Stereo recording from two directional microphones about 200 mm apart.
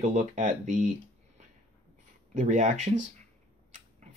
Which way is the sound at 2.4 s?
35° right (ahead or behind).